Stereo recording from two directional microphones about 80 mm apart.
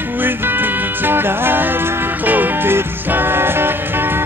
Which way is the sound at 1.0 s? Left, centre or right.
Right.